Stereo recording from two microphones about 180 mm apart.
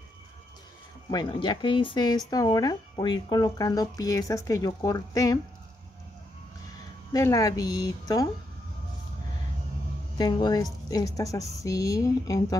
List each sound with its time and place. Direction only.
1.1 s speech: 25° left (ahead or behind)
7.1 s speech: 20° left (ahead or behind)
10.1 s speech: 25° left (ahead or behind)